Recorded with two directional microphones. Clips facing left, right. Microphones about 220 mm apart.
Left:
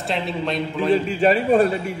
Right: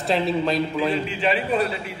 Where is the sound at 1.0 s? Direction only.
45° left (ahead or behind).